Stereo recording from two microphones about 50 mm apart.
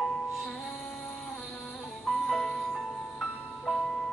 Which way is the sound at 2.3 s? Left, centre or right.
Centre.